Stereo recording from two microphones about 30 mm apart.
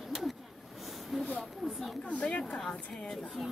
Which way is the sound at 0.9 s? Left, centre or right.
Centre.